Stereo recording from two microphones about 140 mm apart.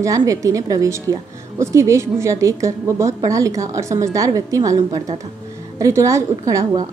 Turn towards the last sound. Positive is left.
turn(degrees=-25)  # may be behind; listen again after turning